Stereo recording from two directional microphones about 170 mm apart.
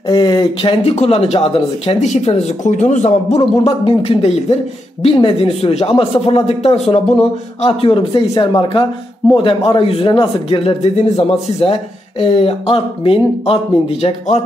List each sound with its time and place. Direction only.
0.0 s speech: 25° left (ahead or behind)